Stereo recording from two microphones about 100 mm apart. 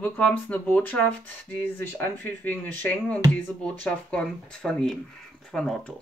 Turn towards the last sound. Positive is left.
turn(degrees=5)  # may be behind; listen again after turning